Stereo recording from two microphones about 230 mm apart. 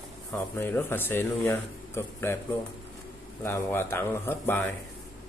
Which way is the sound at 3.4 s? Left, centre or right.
Centre.